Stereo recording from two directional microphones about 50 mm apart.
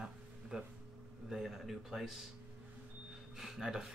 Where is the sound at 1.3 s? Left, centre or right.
Centre.